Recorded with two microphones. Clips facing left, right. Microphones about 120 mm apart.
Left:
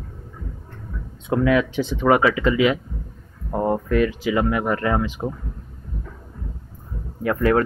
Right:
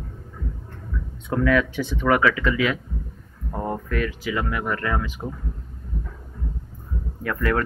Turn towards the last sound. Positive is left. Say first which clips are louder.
# left 5 dB
turn(degrees=25)  # may be behind; listen again after turning